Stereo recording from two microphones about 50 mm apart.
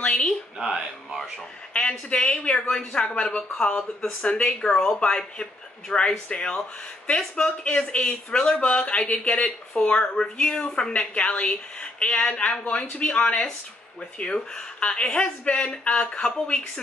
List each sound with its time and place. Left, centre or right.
0.0 s a sound: left
0.6 s speech: centre
1.7 s speech: left